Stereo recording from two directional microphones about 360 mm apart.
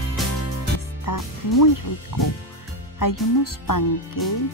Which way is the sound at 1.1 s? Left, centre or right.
Left.